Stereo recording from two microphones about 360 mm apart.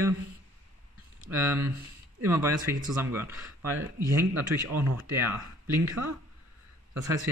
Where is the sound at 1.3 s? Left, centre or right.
Centre.